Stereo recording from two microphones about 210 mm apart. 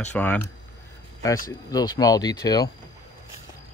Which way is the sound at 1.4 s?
15° left (ahead or behind).